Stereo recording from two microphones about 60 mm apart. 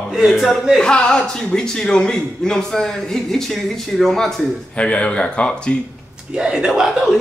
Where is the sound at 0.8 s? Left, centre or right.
Centre.